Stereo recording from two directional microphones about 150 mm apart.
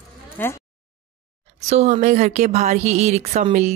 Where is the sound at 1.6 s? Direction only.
50° right (ahead or behind).